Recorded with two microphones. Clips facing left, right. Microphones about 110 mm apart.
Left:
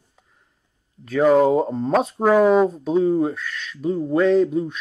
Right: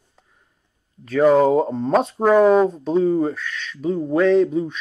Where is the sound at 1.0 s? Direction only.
Centre (ahead or behind).